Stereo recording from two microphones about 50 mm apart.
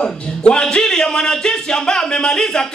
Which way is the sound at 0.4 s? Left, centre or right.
Centre.